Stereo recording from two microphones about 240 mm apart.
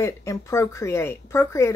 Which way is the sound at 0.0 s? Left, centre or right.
Centre.